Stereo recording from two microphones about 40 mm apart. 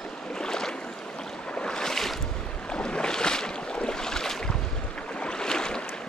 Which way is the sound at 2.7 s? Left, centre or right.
Left.